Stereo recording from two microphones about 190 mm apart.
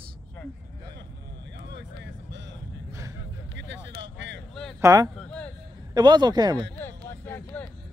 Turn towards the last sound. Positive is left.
turn(degrees=10)  # may be behind; listen again after turning